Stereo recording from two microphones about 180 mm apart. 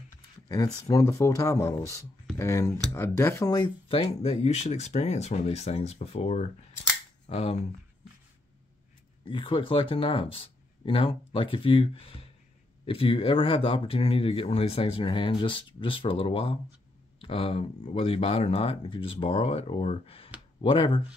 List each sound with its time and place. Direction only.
0.8 s speech: 15° left (ahead or behind); by 7.5 s 35° left (ahead or behind)
9.2 s speech: 25° left (ahead or behind)